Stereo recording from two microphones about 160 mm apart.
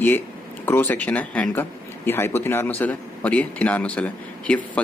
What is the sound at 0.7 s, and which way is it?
A man's voice, 10° left (ahead or behind).